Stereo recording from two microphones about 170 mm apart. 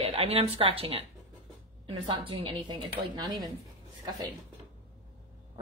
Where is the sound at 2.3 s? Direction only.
30° right (ahead or behind).